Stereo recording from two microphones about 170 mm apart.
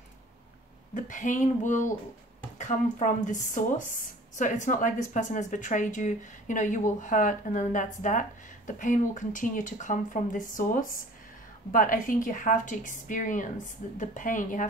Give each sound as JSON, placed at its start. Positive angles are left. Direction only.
{"t": 0.9, "sound": "speech", "side_deg": 50}